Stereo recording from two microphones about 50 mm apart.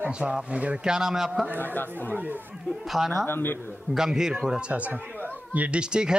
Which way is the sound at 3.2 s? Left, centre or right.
Left.